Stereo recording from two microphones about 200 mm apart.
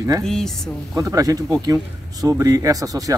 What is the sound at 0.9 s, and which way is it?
Speech, 15° right (ahead or behind).